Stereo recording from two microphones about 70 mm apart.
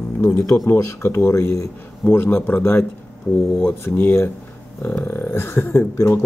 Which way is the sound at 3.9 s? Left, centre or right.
Left.